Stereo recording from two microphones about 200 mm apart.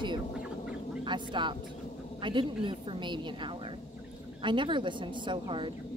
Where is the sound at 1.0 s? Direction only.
25° right (ahead or behind).